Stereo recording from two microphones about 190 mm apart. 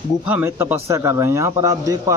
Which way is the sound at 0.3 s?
10° right (ahead or behind).